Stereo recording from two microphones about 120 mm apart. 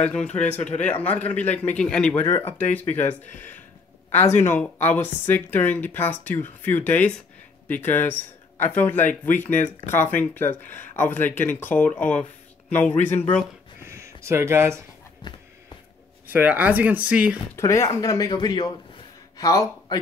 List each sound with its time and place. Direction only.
0.0 s a man's voice: 10° left (ahead or behind)
2.2 s a man's voice: 20° left (ahead or behind)
13.8 s speech: 25° right (ahead or behind)
15.2 s a sound: 40° left (ahead or behind)
16.3 s speech: 15° right (ahead or behind)
17.6 s speech: 25° left (ahead or behind)